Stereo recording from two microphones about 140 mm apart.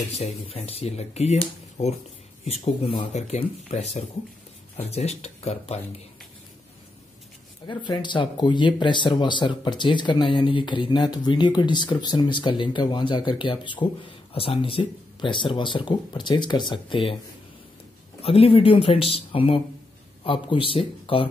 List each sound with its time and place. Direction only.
0.2 s speech: 45° left (ahead or behind)
3.1 s speech: 50° left (ahead or behind)
7.6 s speech: 30° left (ahead or behind)
18.2 s speech: 45° left (ahead or behind)